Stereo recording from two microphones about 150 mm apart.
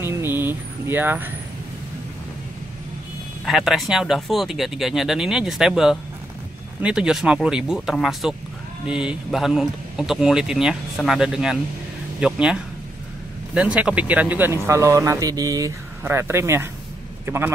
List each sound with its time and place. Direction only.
0.0 s a sound: 15° right (ahead or behind)
3.4 s speech: centre (ahead or behind)
13.6 s speech: 5° right (ahead or behind)